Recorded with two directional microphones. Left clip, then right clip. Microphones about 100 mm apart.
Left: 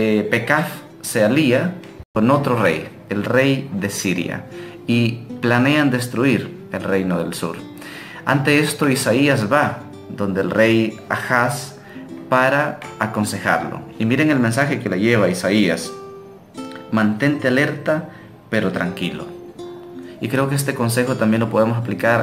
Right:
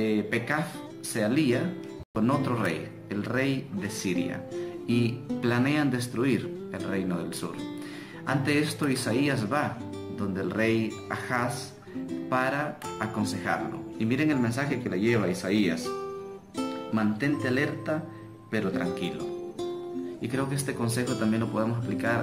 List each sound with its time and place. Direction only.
0.0 s speech: 20° left (ahead or behind)
16.9 s speech: 25° left (ahead or behind)
20.2 s speech: 25° left (ahead or behind)